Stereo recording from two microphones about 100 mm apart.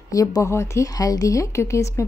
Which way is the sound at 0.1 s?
35° left (ahead or behind).